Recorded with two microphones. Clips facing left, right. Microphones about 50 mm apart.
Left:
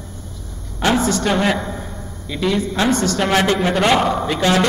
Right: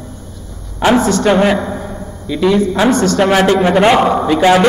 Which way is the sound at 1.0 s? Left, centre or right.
Centre.